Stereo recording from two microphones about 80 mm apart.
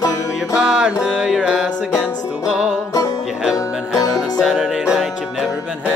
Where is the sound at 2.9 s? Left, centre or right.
Left.